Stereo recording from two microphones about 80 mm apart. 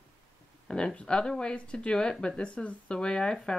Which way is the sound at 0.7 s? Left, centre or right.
Centre.